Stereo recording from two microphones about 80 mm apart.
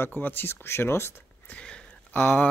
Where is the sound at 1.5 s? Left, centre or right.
Centre.